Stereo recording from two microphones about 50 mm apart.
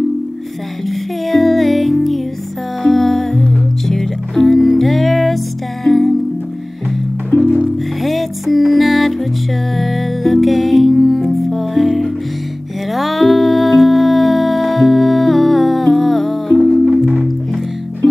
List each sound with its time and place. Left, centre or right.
0.8 s music: centre
7.3 s music: centre
8.0 s music: centre
16.9 s music: centre